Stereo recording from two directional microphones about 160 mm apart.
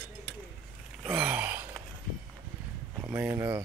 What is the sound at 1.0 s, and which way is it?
Gasp, 5° right (ahead or behind).